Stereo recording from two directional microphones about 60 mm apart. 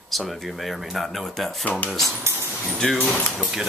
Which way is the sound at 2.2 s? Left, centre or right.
Right.